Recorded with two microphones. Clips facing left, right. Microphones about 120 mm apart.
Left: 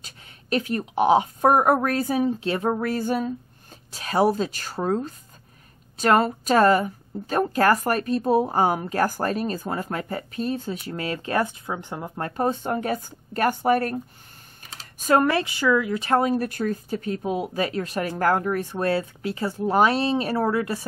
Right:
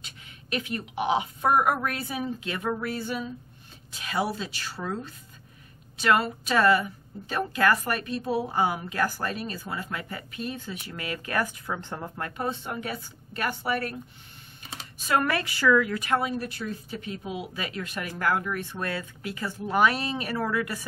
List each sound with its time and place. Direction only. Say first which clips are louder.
0.0 s a woman's voice: even; 40° left (ahead or behind); by 12.1 s 15° left (ahead or behind)
12.2 s speech: left 8 dB; 40° left (ahead or behind)
15.2 s speech: left 3 dB; 25° left (ahead or behind)
16.1 s a woman's voice: left 6 dB; 45° left (ahead or behind)